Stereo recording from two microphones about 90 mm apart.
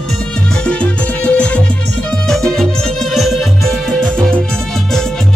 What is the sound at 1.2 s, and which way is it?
Music, 15° left (ahead or behind).